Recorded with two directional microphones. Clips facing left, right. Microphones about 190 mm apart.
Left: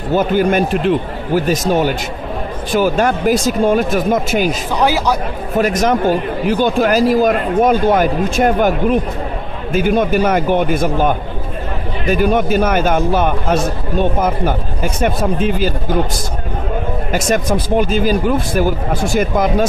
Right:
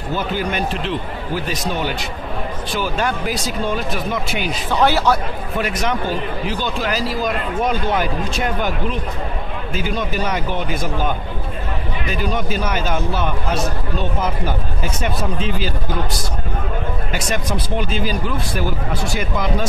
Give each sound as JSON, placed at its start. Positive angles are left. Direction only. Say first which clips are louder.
{"t": 0.1, "sound": "a man's voice", "louder": "left 9 dB", "side_deg": 50}
{"t": 4.7, "sound": "speech", "louder": "right 1 dB", "side_deg": 10}
{"t": 5.6, "sound": "a man's voice", "louder": "left 8 dB", "side_deg": 45}
{"t": 17.1, "sound": "a man's voice", "louder": "left 8 dB", "side_deg": 45}